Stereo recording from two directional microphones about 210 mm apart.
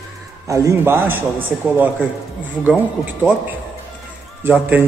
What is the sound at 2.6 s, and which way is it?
Speech, 5° right (ahead or behind).